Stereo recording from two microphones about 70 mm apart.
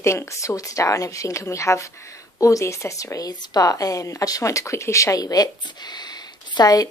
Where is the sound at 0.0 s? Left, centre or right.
Left.